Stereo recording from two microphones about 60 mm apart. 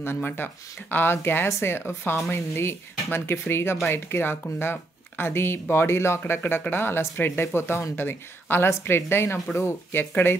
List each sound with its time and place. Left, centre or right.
0.0 s speech: left